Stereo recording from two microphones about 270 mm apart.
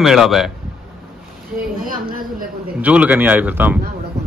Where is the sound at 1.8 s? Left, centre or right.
Right.